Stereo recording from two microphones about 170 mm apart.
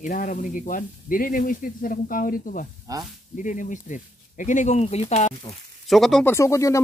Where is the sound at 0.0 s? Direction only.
50° left (ahead or behind).